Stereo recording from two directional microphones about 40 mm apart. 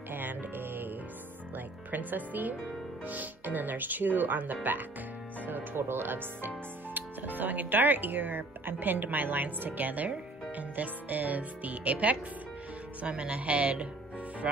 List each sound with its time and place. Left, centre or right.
0.1 s music: right
1.9 s speech: right